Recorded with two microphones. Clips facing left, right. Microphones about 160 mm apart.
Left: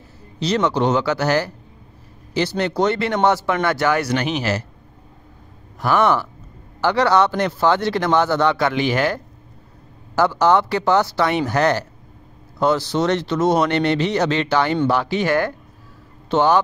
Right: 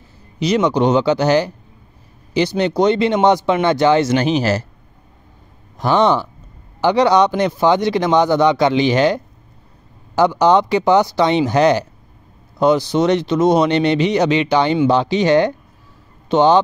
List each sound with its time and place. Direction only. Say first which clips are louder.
0.4 s a man's voice: right 3 dB; 15° right (ahead or behind); by 4.6 s 35° right (ahead or behind)
5.8 s a man's voice: right 3 dB; 20° right (ahead or behind)